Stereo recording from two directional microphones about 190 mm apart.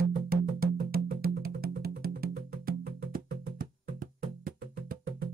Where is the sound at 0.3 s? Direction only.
50° right (ahead or behind).